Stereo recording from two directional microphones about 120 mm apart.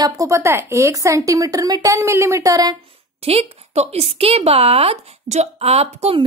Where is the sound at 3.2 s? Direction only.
55° right (ahead or behind).